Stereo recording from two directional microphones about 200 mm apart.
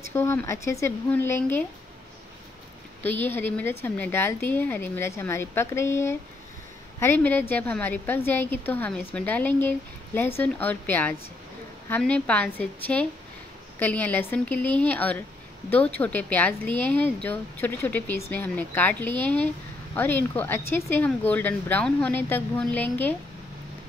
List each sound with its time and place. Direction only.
0.1 s a woman's voice: 15° left (ahead or behind)
3.0 s a woman's voice: 10° left (ahead or behind)